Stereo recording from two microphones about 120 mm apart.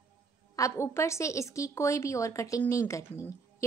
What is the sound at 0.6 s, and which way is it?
Speech, 25° left (ahead or behind).